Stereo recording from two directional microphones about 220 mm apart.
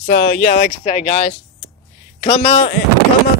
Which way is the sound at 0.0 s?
40° left (ahead or behind).